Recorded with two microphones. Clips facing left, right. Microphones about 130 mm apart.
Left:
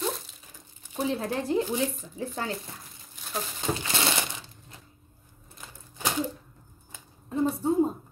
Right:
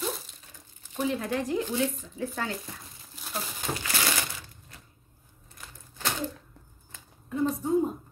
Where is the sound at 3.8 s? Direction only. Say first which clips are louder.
Left 2 dB; 25° left (ahead or behind).